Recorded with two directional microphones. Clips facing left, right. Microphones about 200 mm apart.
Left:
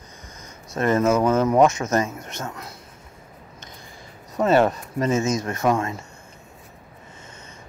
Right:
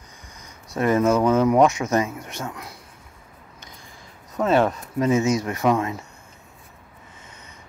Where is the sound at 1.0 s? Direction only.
5° left (ahead or behind).